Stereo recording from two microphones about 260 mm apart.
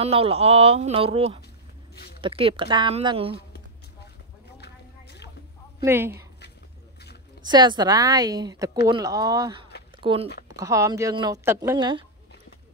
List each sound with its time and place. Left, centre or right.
0.0 s speech: right
4.6 s a sound: left
5.9 s speech: centre
7.4 s speech: centre
9.9 s a sound: centre
10.5 s speech: centre